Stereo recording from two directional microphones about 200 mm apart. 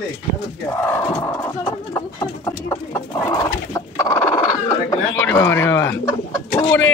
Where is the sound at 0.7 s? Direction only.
15° left (ahead or behind).